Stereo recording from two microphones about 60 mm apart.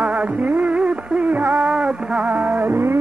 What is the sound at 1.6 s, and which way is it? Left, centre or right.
Music, centre.